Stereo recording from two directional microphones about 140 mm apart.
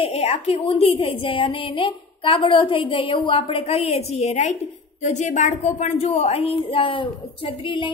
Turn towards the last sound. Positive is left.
turn(degrees=35)  # may be behind; listen again after turning